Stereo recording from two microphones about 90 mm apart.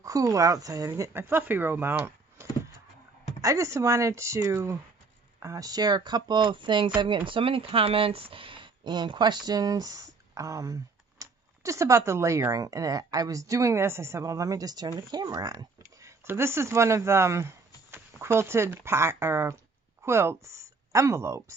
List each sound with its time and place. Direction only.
0.0 s speech: 40° right (ahead or behind)
3.3 s speech: 35° right (ahead or behind); by 6.9 s 65° right (ahead or behind)
7.2 s speech: 85° right; by 15.6 s 45° right (ahead or behind)
16.0 s speech: 30° right (ahead or behind)